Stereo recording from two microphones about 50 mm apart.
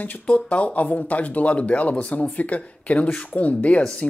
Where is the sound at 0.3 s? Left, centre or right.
Left.